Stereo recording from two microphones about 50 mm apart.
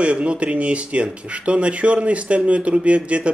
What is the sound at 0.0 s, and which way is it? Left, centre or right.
Speech, right.